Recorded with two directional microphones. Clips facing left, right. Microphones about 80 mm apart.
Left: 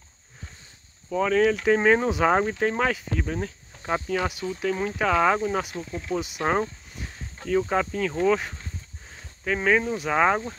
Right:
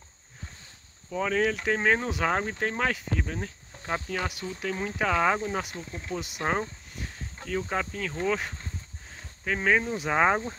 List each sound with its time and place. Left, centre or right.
1.1 s speech: centre
7.7 s speech: centre
9.9 s speech: centre